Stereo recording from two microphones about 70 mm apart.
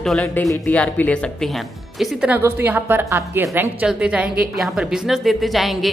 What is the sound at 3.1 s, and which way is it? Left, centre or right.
Speech, right.